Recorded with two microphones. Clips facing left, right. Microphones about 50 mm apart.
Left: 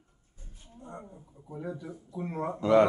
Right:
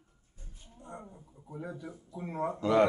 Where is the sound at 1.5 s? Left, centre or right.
Centre.